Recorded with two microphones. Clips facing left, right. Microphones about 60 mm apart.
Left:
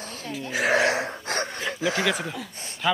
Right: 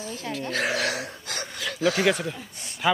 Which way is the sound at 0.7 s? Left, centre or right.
Left.